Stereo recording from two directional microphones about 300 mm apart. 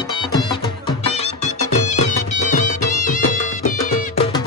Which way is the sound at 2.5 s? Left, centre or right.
Left.